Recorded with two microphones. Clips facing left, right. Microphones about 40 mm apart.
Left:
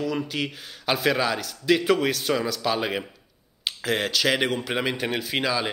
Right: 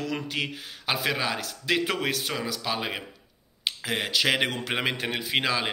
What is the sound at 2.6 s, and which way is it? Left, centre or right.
Speech, centre.